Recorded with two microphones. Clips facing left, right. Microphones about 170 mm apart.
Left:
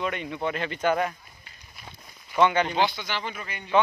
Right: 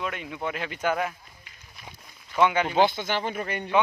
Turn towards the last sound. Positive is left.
turn(degrees=-55)  # may be behind; listen again after turning